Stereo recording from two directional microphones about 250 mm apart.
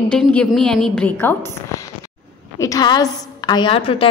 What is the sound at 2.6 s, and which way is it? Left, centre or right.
A woman's voice, centre.